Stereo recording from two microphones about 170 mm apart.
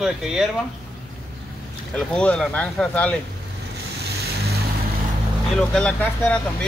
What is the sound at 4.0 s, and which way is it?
Vehicle, 70° right (ahead or behind).